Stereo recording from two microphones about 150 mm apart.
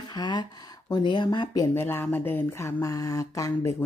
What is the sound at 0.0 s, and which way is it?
Speech, 30° left (ahead or behind).